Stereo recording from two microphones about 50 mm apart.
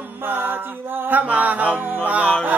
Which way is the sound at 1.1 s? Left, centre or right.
Right.